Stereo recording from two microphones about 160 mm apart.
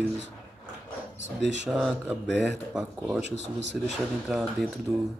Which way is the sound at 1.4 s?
90° right.